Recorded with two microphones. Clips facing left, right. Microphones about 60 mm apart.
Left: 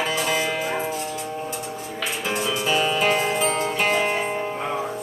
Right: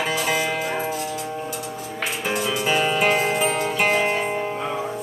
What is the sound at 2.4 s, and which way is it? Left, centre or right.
Music, centre.